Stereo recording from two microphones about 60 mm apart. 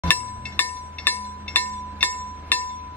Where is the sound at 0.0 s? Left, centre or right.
Left.